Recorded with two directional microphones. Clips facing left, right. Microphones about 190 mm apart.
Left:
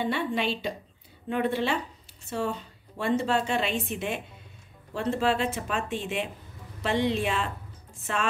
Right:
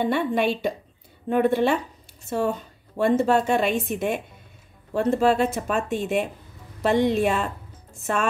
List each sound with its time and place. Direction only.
0.0 s a woman's voice: 50° right (ahead or behind)